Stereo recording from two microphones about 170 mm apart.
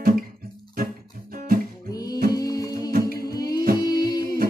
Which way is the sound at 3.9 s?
20° left (ahead or behind).